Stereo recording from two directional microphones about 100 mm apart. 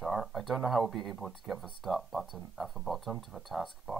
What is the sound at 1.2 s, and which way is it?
Speech, centre (ahead or behind).